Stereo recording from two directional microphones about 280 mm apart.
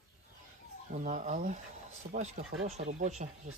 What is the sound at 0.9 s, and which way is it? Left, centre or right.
Speech, right.